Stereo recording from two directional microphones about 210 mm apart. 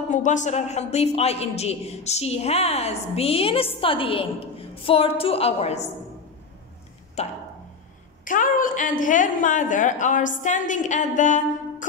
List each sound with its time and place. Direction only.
0.1 s a man's voice: 35° left (ahead or behind)
7.2 s a woman's voice: 30° left (ahead or behind)